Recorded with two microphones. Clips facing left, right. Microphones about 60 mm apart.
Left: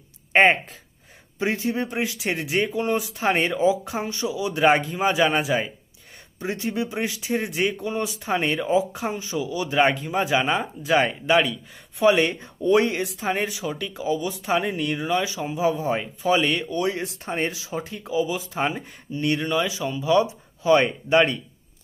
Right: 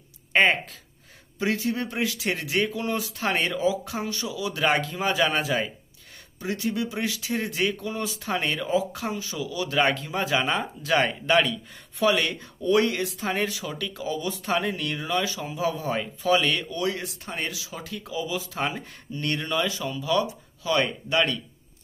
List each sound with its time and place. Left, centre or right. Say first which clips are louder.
0.3 s speech: left 4 dB; left
6.4 s speech: left 1 dB; left; by 11.5 s centre
12.0 s speech: left 4 dB; left